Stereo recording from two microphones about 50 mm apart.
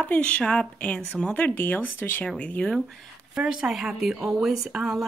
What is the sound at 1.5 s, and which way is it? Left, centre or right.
Speech, left.